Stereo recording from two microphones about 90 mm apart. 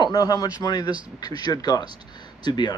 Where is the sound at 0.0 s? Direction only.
40° left (ahead or behind).